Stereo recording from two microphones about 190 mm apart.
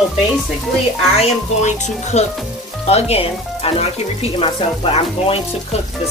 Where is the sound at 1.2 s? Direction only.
35° left (ahead or behind).